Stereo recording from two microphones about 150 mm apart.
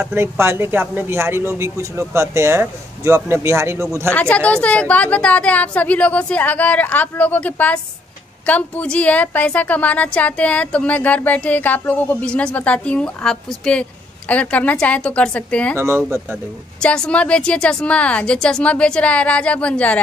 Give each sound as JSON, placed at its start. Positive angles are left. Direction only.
{"t": 0.0, "sound": "speech", "side_deg": -15}
{"t": 4.1, "sound": "a woman's voice", "side_deg": 10}
{"t": 16.8, "sound": "a woman's voice", "side_deg": 5}